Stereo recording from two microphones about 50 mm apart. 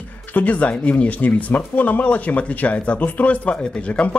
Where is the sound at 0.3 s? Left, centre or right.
Left.